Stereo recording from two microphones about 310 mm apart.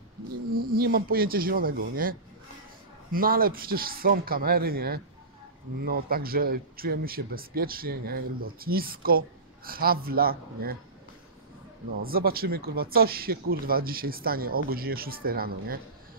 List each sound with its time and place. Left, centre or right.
0.5 s speech: right
12.0 s speech: right